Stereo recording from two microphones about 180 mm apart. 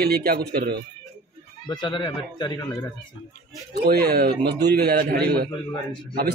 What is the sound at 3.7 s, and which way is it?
A man's voice, 60° right (ahead or behind).